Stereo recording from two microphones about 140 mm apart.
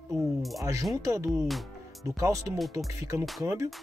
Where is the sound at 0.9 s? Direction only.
25° right (ahead or behind).